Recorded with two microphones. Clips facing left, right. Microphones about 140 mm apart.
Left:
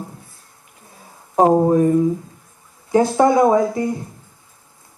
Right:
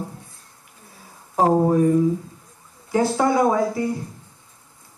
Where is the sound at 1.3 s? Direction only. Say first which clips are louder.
Left 4 dB; 25° left (ahead or behind).